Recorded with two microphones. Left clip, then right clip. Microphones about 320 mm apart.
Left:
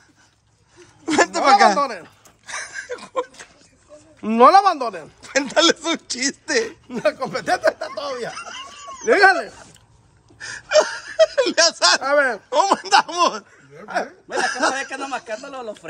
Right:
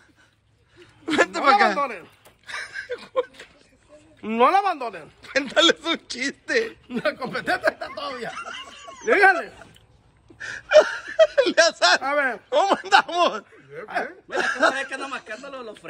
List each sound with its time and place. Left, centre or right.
1.0 s a sound: centre
1.8 s a sound: left
2.6 s a sound: centre
4.2 s speech: left
5.4 s speech: centre
6.7 s speech: left
8.3 s snicker: centre
9.0 s speech: left
10.4 s a sound: centre
12.0 s speech: left
12.4 s speech: centre
15.0 s speech: left